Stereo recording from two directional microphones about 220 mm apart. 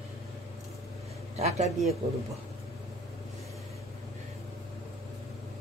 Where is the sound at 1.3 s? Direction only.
30° right (ahead or behind).